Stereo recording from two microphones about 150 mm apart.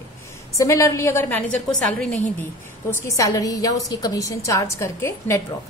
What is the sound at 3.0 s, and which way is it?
A woman's voice, 20° left (ahead or behind).